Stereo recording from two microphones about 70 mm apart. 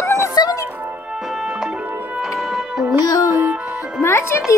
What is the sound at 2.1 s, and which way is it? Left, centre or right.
Music, centre.